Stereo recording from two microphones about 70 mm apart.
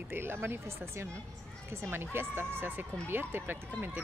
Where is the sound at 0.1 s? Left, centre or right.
Right.